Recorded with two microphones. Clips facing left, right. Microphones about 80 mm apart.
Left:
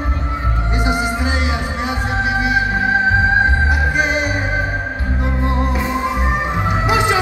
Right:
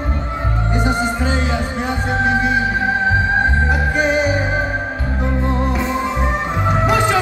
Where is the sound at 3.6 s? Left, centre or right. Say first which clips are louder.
Even; centre.